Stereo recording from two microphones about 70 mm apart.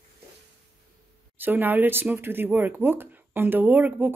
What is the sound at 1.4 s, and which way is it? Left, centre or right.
Speech, right.